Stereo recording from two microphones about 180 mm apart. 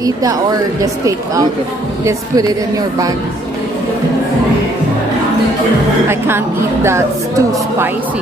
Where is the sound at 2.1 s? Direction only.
20° right (ahead or behind).